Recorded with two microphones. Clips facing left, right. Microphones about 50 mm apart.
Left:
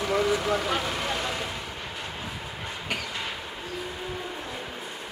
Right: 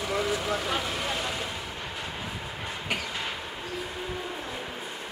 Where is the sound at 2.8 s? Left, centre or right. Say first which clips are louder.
Even; centre.